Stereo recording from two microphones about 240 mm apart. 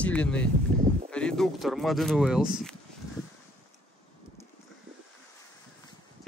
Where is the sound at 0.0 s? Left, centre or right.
Centre.